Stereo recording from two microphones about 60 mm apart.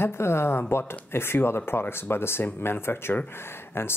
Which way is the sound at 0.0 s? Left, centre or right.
Left.